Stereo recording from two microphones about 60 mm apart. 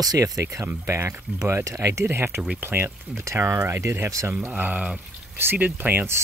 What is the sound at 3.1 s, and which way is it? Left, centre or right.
Speech, right.